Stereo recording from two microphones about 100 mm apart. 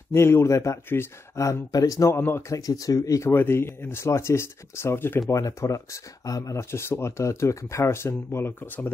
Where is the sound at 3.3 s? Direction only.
25° left (ahead or behind).